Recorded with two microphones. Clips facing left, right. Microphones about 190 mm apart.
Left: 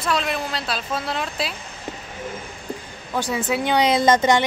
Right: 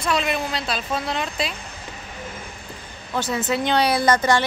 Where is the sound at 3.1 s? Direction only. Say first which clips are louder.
Even; 10° left (ahead or behind).